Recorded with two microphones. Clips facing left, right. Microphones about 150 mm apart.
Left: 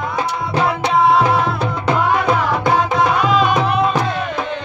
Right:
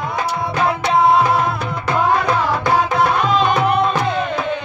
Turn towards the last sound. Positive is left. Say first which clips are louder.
# even
turn(degrees=5)  # may be behind; listen again after turning